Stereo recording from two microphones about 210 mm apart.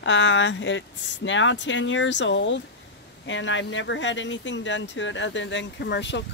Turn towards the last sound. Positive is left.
turn(degrees=55)  # may be behind; listen again after turning